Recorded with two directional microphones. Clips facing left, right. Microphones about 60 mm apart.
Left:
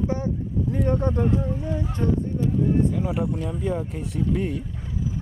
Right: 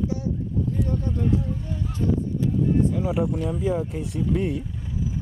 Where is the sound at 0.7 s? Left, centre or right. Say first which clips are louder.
Left 8 dB; left.